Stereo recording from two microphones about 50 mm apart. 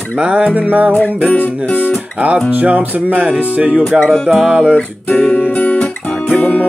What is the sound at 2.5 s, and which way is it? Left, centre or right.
Speech, right.